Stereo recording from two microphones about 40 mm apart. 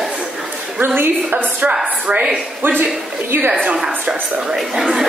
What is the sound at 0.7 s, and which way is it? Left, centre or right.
Speech, right.